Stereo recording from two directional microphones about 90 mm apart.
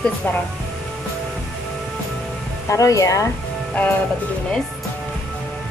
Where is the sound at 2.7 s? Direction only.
40° left (ahead or behind).